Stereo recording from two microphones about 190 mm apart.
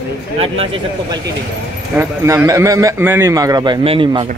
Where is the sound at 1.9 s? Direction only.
15° right (ahead or behind).